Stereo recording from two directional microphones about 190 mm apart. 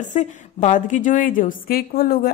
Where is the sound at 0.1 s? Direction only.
40° left (ahead or behind).